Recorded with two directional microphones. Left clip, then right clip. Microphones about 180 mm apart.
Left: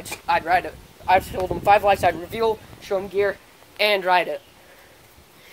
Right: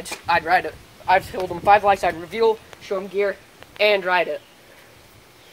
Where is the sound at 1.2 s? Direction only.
25° left (ahead or behind); by 4.2 s 60° left (ahead or behind).